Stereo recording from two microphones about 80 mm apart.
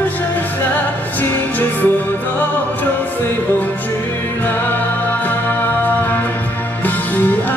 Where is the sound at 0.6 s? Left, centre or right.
Left.